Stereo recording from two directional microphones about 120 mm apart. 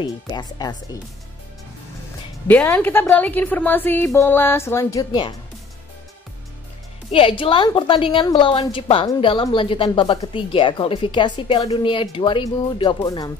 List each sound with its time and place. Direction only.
0.0 s speech: 35° left (ahead or behind)
2.4 s a woman's voice: 15° left (ahead or behind)
7.1 s a woman's voice: 50° left (ahead or behind); by 13.3 s 35° left (ahead or behind)